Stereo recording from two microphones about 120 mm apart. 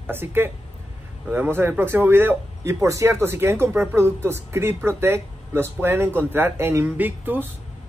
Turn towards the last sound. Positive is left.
turn(degrees=-15)  # may be behind; listen again after turning